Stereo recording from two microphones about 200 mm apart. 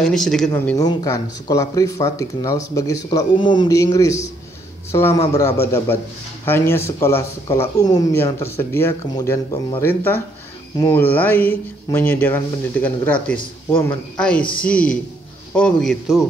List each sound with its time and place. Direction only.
0.0 s a man's voice: centre (ahead or behind)
0.5 s a man's voice: 15° left (ahead or behind); by 16.3 s centre (ahead or behind)